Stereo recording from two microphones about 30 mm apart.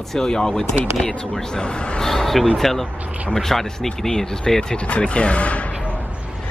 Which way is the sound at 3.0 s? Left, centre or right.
Right.